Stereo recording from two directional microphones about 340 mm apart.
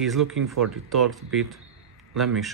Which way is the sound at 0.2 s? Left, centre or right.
Right.